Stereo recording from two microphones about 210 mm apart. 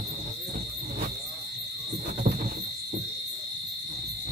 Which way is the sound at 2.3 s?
40° right (ahead or behind).